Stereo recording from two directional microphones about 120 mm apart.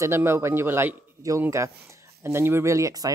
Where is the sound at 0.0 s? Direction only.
20° right (ahead or behind).